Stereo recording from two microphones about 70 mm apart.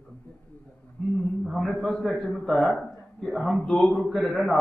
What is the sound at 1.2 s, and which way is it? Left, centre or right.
A man's voice, centre.